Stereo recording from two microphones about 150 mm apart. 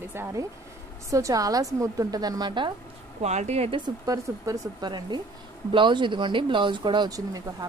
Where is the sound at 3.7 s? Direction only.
25° right (ahead or behind).